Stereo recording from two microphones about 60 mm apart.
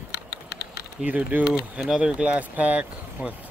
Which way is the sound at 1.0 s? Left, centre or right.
Right.